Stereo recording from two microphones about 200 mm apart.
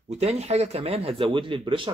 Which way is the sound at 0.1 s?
30° right (ahead or behind).